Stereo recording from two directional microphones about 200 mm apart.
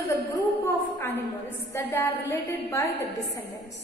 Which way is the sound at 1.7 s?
15° left (ahead or behind).